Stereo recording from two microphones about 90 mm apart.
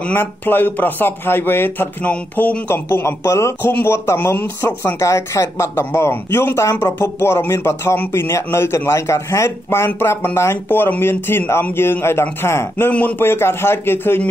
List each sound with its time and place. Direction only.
0.0 s speech: 20° left (ahead or behind)